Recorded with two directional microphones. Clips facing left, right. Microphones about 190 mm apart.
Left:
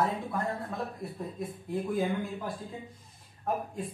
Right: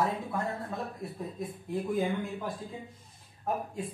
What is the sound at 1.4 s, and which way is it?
Speech, centre (ahead or behind).